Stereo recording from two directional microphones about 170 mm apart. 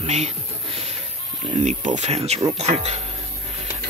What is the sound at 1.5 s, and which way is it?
Speech, 45° right (ahead or behind).